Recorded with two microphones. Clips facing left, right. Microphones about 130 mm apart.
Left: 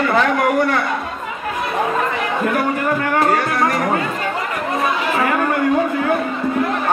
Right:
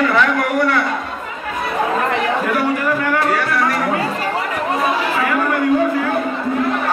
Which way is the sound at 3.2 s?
45° left (ahead or behind).